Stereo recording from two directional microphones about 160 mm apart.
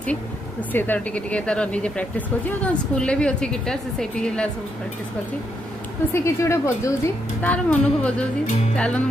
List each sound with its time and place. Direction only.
0.7 s speech: 10° left (ahead or behind)
6.1 s speech: 15° left (ahead or behind)